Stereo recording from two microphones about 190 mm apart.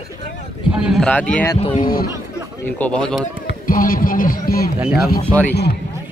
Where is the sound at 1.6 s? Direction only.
35° left (ahead or behind).